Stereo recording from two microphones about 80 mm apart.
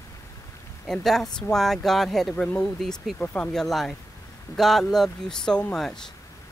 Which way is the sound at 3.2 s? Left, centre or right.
Centre.